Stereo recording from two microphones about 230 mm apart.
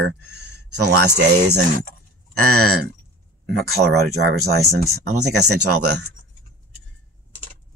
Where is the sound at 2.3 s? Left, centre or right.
Right.